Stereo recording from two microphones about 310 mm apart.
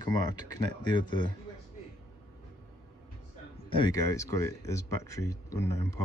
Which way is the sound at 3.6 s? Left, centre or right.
Centre.